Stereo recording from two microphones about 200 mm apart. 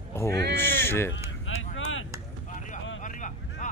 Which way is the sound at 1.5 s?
75° left (ahead or behind).